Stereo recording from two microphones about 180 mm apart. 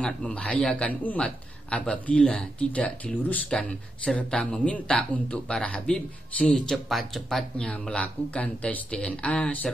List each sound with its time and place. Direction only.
0.0 s a man's voice: 5° left (ahead or behind)